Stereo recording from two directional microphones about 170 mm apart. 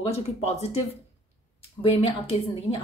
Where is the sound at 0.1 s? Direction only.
40° left (ahead or behind).